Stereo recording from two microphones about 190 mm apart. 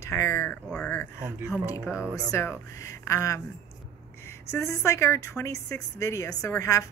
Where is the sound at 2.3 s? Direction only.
15° left (ahead or behind).